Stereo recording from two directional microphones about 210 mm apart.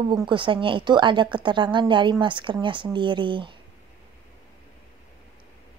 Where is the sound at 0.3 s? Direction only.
25° right (ahead or behind).